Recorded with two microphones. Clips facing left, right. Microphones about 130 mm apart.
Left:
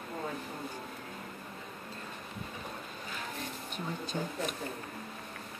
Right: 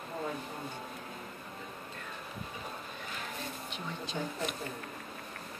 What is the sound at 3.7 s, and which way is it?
Speech, 45° left (ahead or behind).